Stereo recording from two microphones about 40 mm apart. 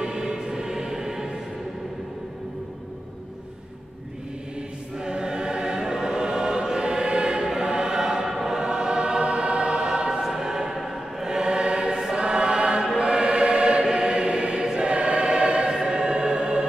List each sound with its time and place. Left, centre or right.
0.0 s music: centre
4.9 s choir: centre
11.2 s choir: centre
15.7 s music: right